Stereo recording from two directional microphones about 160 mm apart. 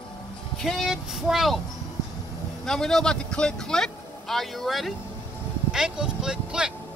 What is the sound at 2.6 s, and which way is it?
Speech, 5° left (ahead or behind).